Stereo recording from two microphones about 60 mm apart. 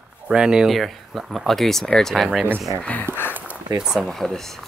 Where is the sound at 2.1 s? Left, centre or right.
Centre.